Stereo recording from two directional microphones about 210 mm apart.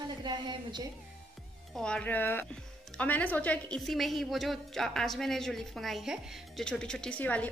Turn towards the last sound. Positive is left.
turn(degrees=5)  # may be behind; listen again after turning